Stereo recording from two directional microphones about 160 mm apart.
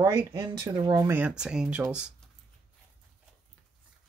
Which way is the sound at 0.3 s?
30° right (ahead or behind).